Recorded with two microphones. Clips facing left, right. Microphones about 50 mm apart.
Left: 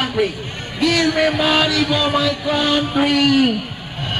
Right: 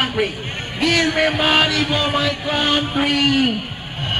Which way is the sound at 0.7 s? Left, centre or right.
Right.